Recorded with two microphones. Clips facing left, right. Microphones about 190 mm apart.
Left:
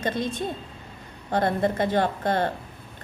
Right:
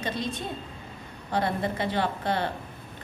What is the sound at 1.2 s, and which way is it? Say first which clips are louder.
A woman's voice: left 4 dB; 50° left (ahead or behind).